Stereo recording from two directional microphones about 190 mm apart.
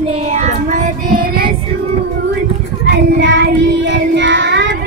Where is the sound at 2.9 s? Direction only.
70° right (ahead or behind).